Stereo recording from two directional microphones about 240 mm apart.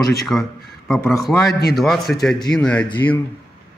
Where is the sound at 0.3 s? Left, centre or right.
Centre.